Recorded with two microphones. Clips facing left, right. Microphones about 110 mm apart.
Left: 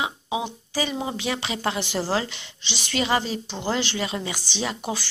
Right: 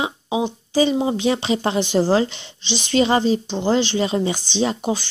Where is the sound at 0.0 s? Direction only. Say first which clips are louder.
Right 5 dB; 25° right (ahead or behind).